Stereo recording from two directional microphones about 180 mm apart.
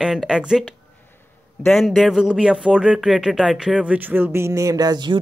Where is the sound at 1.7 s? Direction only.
Centre (ahead or behind).